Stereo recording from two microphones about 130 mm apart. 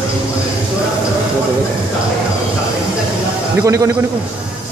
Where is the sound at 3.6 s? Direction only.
25° right (ahead or behind).